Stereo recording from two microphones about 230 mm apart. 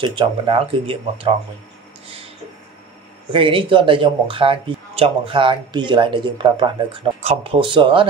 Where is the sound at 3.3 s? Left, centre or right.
Right.